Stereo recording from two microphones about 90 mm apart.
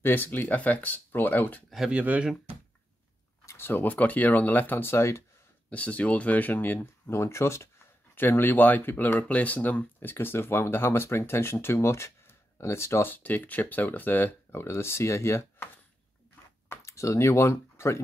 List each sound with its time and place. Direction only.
0.0 s speech: 25° left (ahead or behind)
1.9 s speech: 15° right (ahead or behind)
3.4 s speech: 25° left (ahead or behind)
5.7 s speech: 15° left (ahead or behind); by 18.0 s 30° left (ahead or behind)